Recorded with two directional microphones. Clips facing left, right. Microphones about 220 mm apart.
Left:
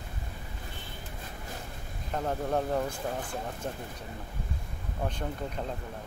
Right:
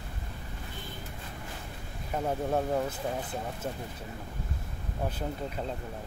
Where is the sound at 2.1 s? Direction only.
5° right (ahead or behind).